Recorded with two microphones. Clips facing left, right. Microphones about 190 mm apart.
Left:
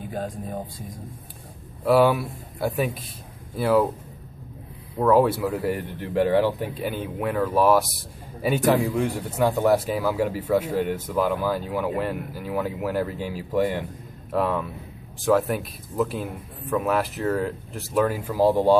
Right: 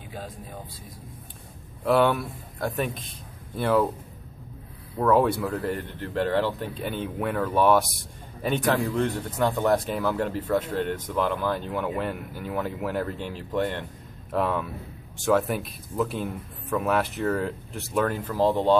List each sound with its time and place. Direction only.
0.1 s speech: 45° left (ahead or behind)
1.9 s speech: 5° left (ahead or behind)
4.9 s speech: 5° left (ahead or behind)